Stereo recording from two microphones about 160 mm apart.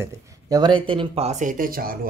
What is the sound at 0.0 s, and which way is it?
Speech, 25° right (ahead or behind).